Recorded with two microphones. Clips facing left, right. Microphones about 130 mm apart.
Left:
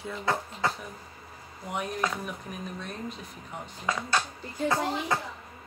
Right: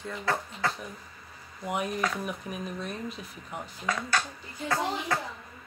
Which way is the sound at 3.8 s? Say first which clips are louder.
Left 1 dB; 25° left (ahead or behind).